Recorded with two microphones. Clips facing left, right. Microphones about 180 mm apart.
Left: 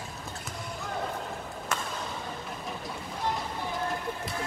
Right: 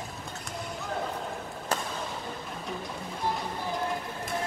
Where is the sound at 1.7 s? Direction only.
35° right (ahead or behind).